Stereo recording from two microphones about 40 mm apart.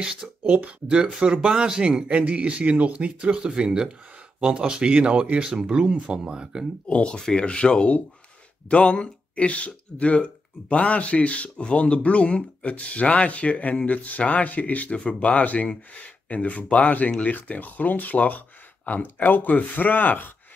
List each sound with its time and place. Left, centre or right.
0.0 s speech: centre
0.4 s speech: right
1.2 s speech: right
3.2 s speech: right
6.9 s speech: left
14.9 s speech: left